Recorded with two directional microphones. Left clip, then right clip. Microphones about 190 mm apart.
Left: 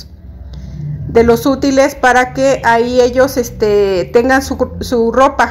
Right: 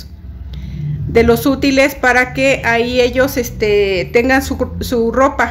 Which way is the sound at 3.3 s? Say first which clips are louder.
Left 2 dB; 10° left (ahead or behind).